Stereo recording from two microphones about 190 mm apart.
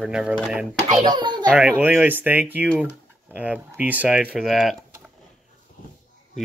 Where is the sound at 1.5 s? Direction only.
5° right (ahead or behind).